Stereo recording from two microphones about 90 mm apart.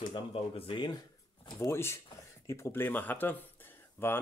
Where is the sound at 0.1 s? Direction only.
90° left.